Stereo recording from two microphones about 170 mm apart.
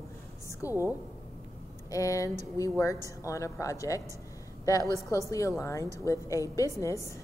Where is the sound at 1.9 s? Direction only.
20° left (ahead or behind).